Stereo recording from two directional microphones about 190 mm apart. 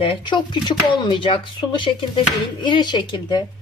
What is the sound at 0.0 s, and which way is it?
Speech, 25° left (ahead or behind).